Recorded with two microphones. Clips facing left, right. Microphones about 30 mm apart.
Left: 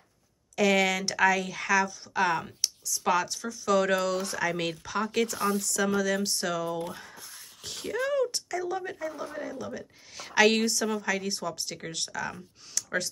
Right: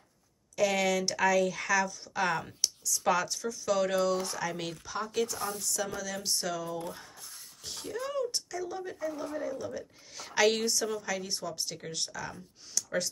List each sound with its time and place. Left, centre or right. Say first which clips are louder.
0.6 s speech: left 3 dB; left
7.6 s a sound: left 6 dB; left
8.6 s speech: left 5 dB; left
9.0 s speech: even; left
11.2 s speech: left 4 dB; left